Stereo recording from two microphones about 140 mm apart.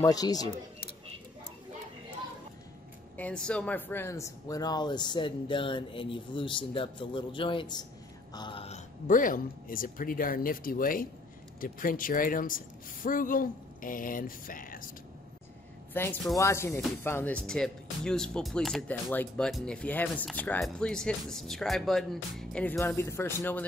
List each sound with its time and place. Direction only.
0.0 s speech: 25° left (ahead or behind)
3.2 s speech: 10° left (ahead or behind); by 8.8 s 45° left (ahead or behind)
9.0 s a woman's voice: 70° left (ahead or behind)
15.9 s speech: 15° left (ahead or behind)
22.8 s speech: 20° left (ahead or behind)